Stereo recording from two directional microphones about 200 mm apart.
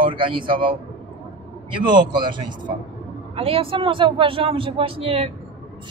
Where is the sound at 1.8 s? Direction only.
25° right (ahead or behind).